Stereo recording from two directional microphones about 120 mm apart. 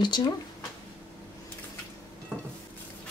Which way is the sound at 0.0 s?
40° left (ahead or behind).